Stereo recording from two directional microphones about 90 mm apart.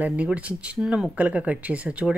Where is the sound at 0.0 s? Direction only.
15° right (ahead or behind).